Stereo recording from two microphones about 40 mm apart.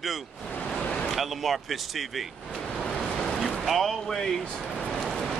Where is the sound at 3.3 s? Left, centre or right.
Centre.